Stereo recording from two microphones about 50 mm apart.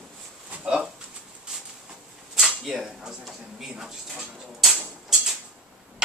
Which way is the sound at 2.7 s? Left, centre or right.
Centre.